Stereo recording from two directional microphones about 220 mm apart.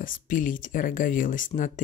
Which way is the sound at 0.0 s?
40° left (ahead or behind).